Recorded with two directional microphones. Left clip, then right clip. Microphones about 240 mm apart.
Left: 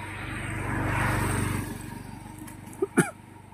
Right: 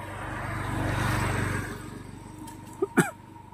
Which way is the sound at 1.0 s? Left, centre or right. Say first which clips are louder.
Left 1 dB; left.